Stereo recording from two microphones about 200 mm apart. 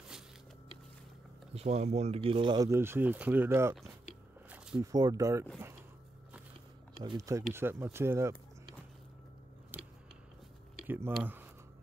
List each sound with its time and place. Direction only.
1.5 s speech: 30° right (ahead or behind); by 3.7 s 15° right (ahead or behind)
4.5 s a sound: 5° right (ahead or behind)
4.9 s speech: 20° right (ahead or behind)
7.0 s speech: 20° right (ahead or behind)
9.7 s scissors: 10° right (ahead or behind)
10.9 s speech: 10° right (ahead or behind)